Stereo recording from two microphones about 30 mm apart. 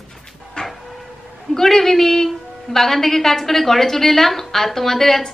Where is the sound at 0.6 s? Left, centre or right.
Left.